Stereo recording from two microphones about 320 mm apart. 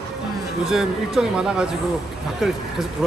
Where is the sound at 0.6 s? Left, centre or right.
Centre.